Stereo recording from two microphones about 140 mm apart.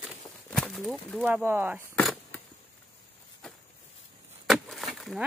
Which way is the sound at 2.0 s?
10° left (ahead or behind).